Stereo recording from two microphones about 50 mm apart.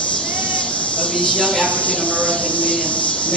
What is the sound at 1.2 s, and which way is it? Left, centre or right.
Speech, left.